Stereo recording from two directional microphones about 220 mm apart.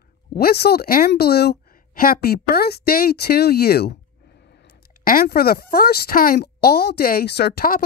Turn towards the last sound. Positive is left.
turn(degrees=40)  # may be behind; listen again after turning